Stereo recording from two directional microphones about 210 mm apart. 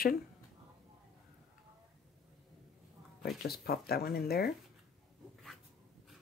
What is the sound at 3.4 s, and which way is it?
Speech, 45° left (ahead or behind).